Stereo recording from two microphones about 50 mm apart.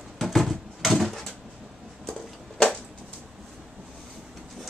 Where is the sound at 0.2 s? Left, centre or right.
Centre.